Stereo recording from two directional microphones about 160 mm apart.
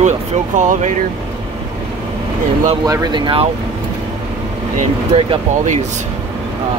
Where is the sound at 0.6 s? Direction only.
50° right (ahead or behind).